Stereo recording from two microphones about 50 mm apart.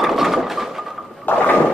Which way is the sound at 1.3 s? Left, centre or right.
Left.